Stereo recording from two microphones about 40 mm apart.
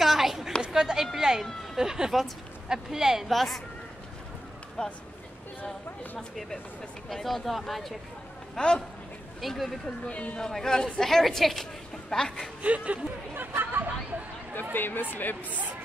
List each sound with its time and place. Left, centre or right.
0.0 s chatter: centre
0.7 s a sound: centre
1.8 s speech: centre
3.3 s speech: centre
4.8 s speech: left
6.1 s speech: centre
8.5 s speech: left
9.4 s speech: centre
9.8 s speech: left
10.4 s speech: centre
12.6 s speech: right
13.3 s speech: right
14.5 s speech: left